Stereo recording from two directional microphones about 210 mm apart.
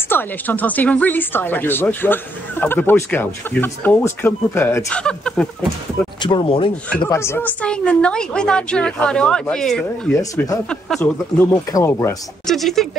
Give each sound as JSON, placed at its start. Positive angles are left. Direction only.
{"t": 0.1, "sound": "speech", "side_deg": 10}
{"t": 6.2, "sound": "a woman's voice", "side_deg": 25}
{"t": 10.1, "sound": "speech", "side_deg": 15}
{"t": 12.4, "sound": "a woman's voice", "side_deg": 0}